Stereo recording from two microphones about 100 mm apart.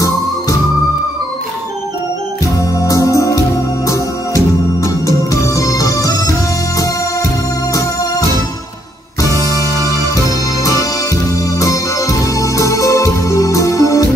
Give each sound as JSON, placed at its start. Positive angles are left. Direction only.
{"t": 2.5, "sound": "music", "side_deg": 35}
{"t": 7.7, "sound": "organ", "side_deg": 35}
{"t": 9.2, "sound": "music", "side_deg": 35}